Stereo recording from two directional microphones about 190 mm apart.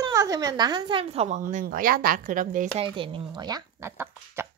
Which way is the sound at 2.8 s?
25° right (ahead or behind).